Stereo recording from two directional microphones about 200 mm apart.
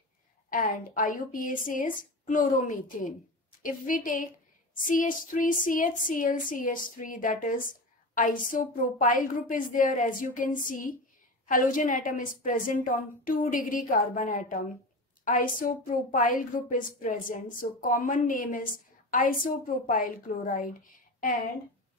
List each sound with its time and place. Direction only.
0.5 s a woman's voice: 40° left (ahead or behind)